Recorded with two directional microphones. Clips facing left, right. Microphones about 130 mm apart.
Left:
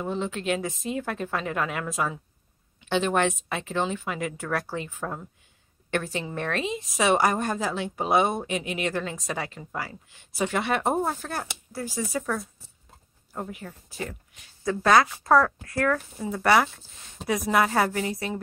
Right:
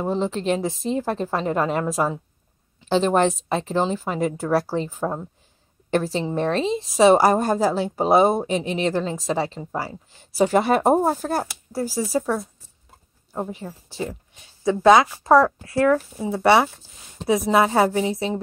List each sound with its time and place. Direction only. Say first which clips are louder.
0.0 s a woman's voice: right 6 dB; 35° right (ahead or behind)